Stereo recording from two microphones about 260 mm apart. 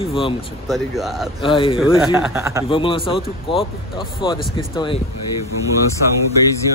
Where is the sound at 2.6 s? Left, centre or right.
Centre.